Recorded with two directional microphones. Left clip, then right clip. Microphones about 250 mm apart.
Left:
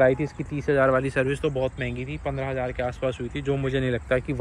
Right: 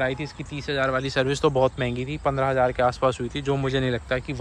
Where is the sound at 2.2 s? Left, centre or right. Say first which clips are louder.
Right 7 dB; right.